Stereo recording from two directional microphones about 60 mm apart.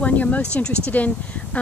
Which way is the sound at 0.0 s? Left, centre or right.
Left.